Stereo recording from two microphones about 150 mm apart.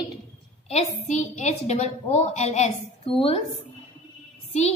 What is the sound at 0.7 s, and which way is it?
A woman's voice, 45° left (ahead or behind).